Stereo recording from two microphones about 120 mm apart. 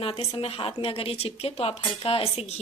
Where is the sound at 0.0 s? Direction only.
55° left (ahead or behind).